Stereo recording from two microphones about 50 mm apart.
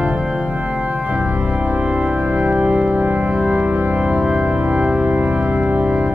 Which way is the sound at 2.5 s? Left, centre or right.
Centre.